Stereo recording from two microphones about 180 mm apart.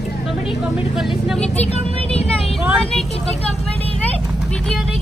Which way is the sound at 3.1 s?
35° left (ahead or behind).